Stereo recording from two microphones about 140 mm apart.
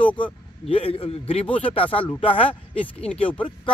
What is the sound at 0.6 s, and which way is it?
A man's voice, 40° left (ahead or behind).